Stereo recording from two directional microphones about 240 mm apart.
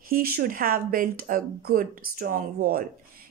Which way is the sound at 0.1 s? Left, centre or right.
Right.